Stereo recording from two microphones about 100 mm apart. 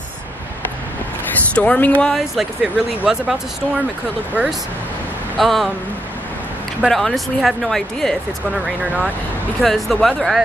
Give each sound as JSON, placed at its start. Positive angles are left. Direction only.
{"t": 1.5, "sound": "speech", "side_deg": 10}
{"t": 4.4, "sound": "speech", "side_deg": -15}
{"t": 5.4, "sound": "speech", "side_deg": 0}
{"t": 6.9, "sound": "speech", "side_deg": 0}